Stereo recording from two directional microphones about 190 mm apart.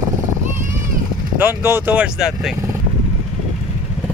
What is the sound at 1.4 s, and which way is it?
Speech, 10° right (ahead or behind).